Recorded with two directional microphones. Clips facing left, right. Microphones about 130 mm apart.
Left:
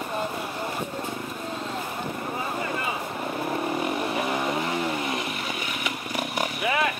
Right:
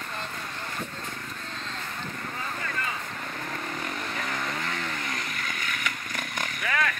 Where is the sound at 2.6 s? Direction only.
20° left (ahead or behind).